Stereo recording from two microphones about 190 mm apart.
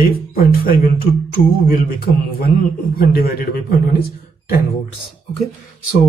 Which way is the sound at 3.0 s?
55° left (ahead or behind).